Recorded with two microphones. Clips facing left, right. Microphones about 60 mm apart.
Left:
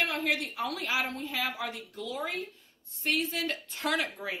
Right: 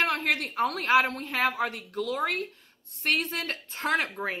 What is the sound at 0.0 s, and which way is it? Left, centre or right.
A woman's voice, right.